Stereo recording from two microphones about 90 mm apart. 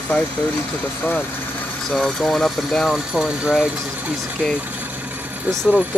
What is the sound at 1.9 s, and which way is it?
Speech, 5° left (ahead or behind).